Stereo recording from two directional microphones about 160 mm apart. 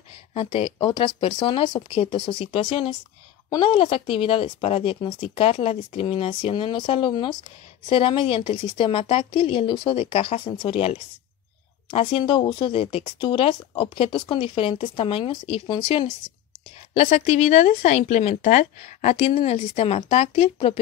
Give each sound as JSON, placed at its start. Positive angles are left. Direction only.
{"t": 0.3, "sound": "speech", "side_deg": 35}